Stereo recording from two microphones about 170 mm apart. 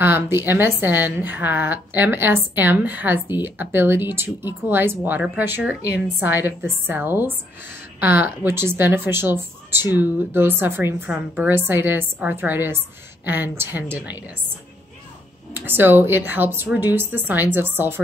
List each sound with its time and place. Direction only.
0.0 s a woman's voice: 15° right (ahead or behind)
15.5 s a woman's voice: 10° right (ahead or behind)